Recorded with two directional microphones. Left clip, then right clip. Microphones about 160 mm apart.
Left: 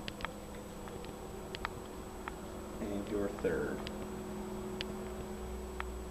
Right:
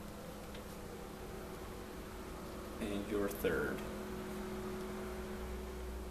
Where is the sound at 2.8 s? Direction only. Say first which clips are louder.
Left 1 dB; 25° right (ahead or behind).